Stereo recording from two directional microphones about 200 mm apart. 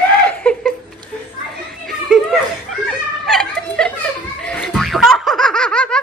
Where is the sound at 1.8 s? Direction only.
Centre (ahead or behind).